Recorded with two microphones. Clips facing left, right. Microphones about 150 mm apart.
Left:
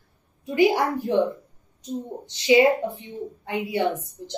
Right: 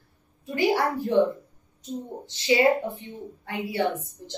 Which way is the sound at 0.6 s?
15° left (ahead or behind).